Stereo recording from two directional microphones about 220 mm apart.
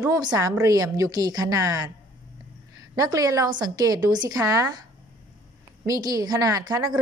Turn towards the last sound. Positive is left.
turn(degrees=-20)  # may be behind; listen again after turning